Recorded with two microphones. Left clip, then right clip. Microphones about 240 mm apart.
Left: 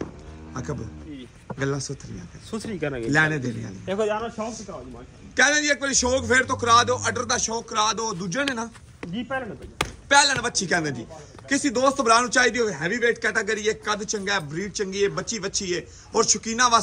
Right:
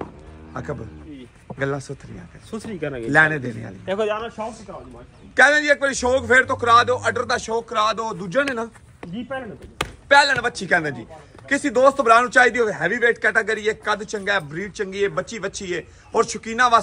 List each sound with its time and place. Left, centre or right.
0.5 s a man's voice: centre
3.8 s a man's voice: right
5.3 s a man's voice: centre